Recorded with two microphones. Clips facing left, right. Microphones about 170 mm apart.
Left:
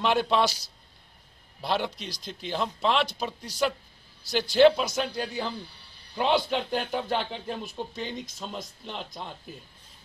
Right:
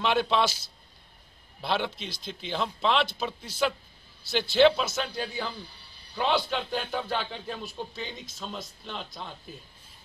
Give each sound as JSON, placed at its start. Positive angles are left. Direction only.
{"t": 0.0, "sound": "speech", "side_deg": 10}
{"t": 1.6, "sound": "speech", "side_deg": 10}
{"t": 2.0, "sound": "speech", "side_deg": 40}
{"t": 2.5, "sound": "a man's voice", "side_deg": 10}
{"t": 6.1, "sound": "speech", "side_deg": 15}